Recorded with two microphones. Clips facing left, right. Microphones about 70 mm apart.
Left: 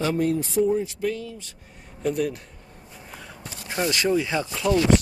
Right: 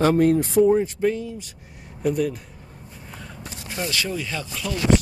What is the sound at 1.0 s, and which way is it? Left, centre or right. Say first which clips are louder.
Speech: right 5 dB; right.